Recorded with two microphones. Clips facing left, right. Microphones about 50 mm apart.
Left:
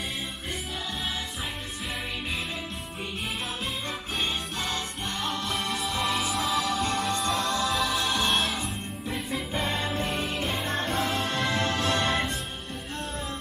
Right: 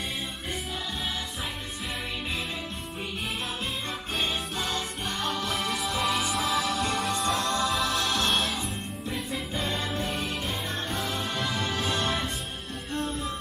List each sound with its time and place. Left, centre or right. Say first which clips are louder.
4.2 s music: right 1 dB; centre
10.7 s music: left 4 dB; left
11.9 s music: left 2 dB; centre